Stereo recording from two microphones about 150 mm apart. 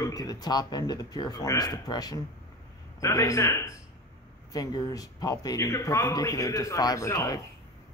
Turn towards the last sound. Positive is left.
turn(degrees=20)  # may be behind; listen again after turning